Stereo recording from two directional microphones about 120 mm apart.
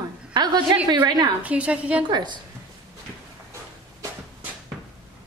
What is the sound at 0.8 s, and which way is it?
Speech, 35° right (ahead or behind).